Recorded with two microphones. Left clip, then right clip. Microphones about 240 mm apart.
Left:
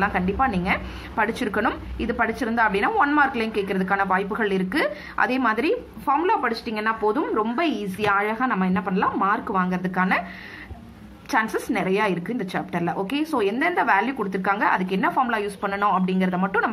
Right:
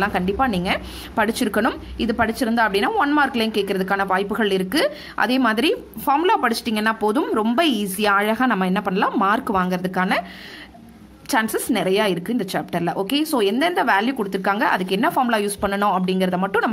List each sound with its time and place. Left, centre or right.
0.0 s a woman's voice: right
11.2 s a woman's voice: right